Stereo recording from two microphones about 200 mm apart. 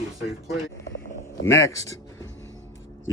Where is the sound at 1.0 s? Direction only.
15° left (ahead or behind).